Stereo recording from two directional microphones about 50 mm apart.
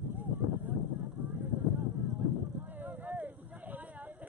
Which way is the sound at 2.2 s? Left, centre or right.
Right.